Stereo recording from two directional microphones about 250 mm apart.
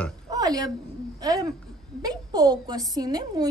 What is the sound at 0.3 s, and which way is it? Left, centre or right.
Oink, centre.